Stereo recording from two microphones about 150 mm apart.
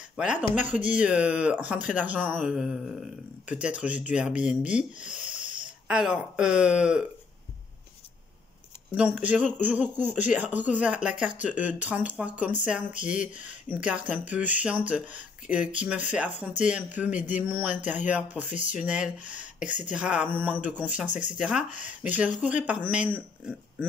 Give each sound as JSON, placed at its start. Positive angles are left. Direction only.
{"t": 0.2, "sound": "speech", "side_deg": -5}
{"t": 8.9, "sound": "speech", "side_deg": -10}
{"t": 21.7, "sound": "speech", "side_deg": 55}
{"t": 22.4, "sound": "speech", "side_deg": -10}